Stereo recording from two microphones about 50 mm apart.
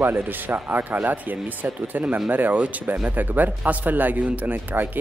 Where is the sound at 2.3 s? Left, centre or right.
Right.